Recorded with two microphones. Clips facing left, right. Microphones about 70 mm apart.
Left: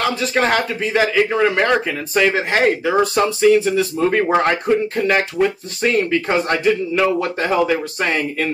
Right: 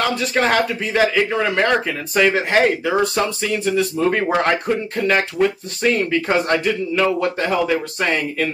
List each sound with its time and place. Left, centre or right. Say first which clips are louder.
0.0 s speech: left 1 dB; centre
1.3 s speech: left 2 dB; centre
2.1 s speech: right 1 dB; centre